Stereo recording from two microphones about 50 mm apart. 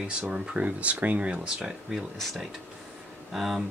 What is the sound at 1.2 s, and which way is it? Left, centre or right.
Speech, centre.